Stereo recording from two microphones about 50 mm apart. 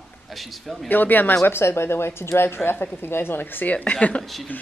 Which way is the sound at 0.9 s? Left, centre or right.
Left.